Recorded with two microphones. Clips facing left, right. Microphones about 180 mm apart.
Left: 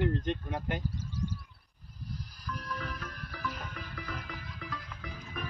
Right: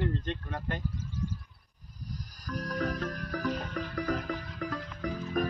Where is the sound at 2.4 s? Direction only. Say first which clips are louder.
Right 7 dB; 40° right (ahead or behind).